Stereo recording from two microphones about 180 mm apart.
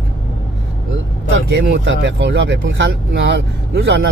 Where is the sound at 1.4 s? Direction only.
85° right.